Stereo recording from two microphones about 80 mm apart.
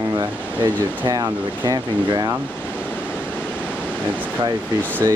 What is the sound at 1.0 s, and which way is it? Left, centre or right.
Speech, right.